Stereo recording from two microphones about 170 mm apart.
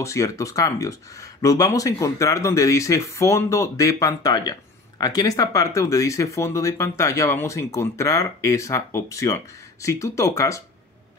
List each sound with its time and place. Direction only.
0.0 s speech: 20° left (ahead or behind)